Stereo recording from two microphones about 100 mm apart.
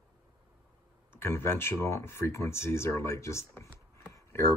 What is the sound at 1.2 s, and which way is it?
Speech, 25° left (ahead or behind).